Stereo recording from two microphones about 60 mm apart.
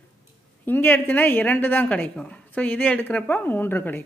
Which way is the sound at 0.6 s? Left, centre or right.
Left.